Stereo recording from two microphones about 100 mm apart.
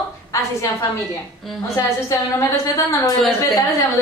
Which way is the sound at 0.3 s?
30° left (ahead or behind).